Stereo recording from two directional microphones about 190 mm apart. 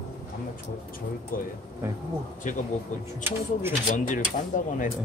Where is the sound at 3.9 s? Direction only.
45° left (ahead or behind).